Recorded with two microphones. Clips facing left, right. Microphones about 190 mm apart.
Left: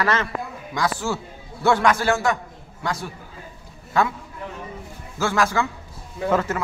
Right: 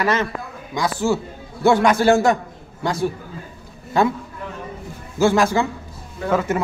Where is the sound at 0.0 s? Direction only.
15° right (ahead or behind).